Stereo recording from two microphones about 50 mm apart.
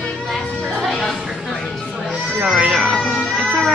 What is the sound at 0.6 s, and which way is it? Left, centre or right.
Music, centre.